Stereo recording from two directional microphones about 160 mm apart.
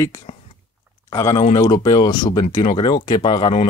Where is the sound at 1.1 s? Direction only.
20° left (ahead or behind).